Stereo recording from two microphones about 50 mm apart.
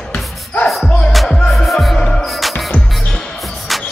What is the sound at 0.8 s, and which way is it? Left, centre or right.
Music, centre.